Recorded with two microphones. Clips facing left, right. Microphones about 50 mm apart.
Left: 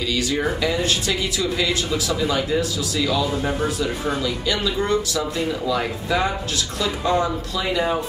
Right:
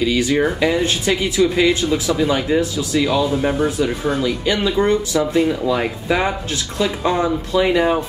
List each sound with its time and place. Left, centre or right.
0.0 s speech: right
3.3 s speech: centre
3.6 s speech: right